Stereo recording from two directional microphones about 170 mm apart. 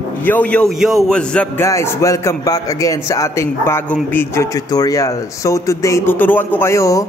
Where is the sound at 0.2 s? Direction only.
10° left (ahead or behind).